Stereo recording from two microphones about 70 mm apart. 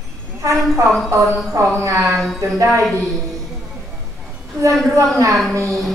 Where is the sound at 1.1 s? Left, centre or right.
Right.